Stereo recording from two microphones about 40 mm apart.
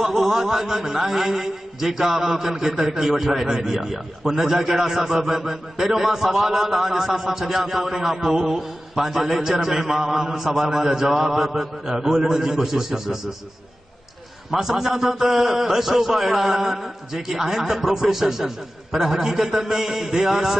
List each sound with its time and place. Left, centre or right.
0.0 s a man's voice: centre
14.5 s a man's voice: centre